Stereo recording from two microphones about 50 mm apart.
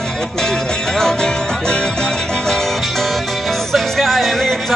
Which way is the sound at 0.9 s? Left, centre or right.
Centre.